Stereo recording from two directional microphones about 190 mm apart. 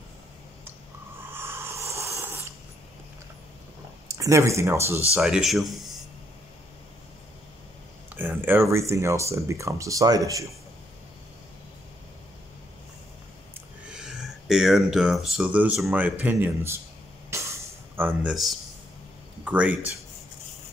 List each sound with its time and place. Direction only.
1.3 s wheeze: 10° right (ahead or behind)
4.1 s speech: 15° right (ahead or behind)
5.1 s speech: centre (ahead or behind)
8.2 s speech: 10° right (ahead or behind)
13.8 s speech: 5° right (ahead or behind)
17.3 s a sound: 15° right (ahead or behind)
19.4 s speech: 5° right (ahead or behind)